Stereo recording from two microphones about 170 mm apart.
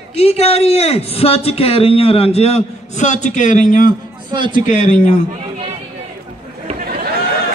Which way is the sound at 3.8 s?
25° right (ahead or behind).